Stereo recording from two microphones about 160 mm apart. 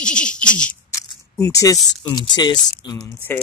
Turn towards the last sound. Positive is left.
turn(degrees=25)  # may be behind; listen again after turning